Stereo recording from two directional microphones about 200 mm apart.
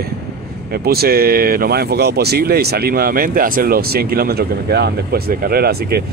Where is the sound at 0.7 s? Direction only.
50° right (ahead or behind).